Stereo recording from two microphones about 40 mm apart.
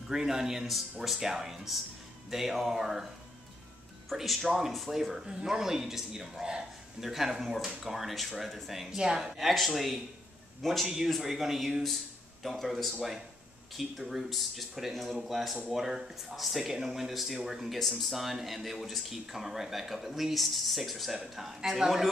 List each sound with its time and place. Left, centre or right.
0.1 s speech: centre
4.1 s speech: centre
5.2 s speech: centre
8.9 s speech: centre
9.5 s speech: centre
11.1 s speech: centre